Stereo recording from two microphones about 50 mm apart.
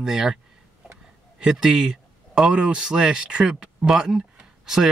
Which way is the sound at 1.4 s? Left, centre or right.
Centre.